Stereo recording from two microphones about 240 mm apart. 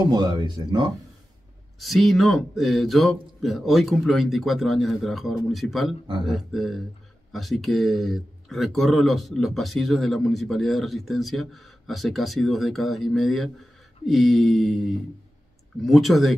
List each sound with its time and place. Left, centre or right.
0.1 s speech: centre
1.8 s speech: centre